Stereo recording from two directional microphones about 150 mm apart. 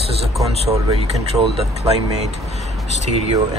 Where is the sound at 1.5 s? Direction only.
45° right (ahead or behind).